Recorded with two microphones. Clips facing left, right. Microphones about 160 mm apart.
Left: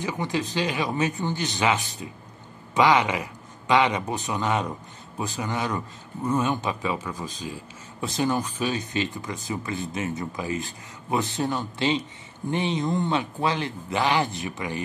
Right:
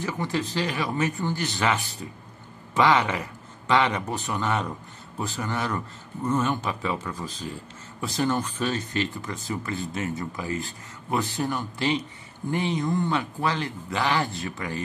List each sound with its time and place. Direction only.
0.0 s speech: 15° left (ahead or behind)